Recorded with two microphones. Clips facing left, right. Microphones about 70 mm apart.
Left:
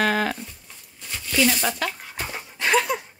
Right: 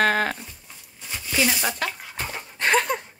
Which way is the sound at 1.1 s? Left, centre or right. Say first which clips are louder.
Left 2 dB; centre.